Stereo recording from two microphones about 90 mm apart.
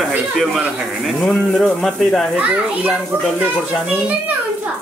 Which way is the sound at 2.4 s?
10° right (ahead or behind).